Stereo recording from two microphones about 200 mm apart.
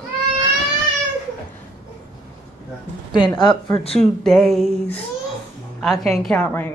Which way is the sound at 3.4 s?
25° left (ahead or behind).